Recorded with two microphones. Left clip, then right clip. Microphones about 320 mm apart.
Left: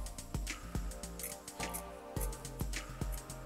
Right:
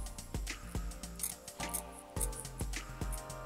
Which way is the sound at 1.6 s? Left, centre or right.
Centre.